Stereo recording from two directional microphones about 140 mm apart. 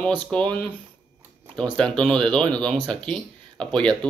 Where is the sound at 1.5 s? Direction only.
5° left (ahead or behind).